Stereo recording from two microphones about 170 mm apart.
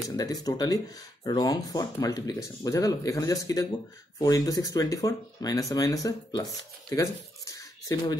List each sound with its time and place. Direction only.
0.1 s speech: 20° left (ahead or behind)